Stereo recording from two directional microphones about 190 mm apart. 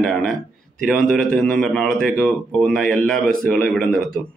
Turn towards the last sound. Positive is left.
turn(degrees=5)  # may be behind; listen again after turning